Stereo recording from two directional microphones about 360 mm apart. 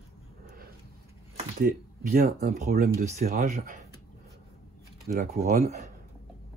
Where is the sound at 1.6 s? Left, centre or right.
Right.